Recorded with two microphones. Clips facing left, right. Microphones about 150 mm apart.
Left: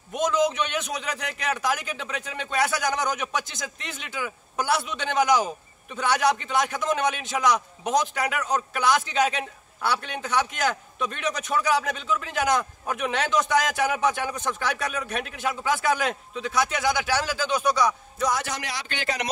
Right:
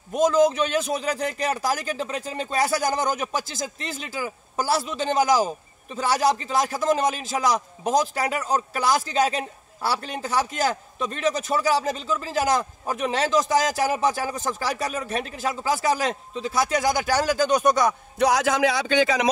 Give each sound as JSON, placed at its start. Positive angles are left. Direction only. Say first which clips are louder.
{"t": 0.1, "sound": "a man's voice", "louder": "right 5 dB", "side_deg": -35}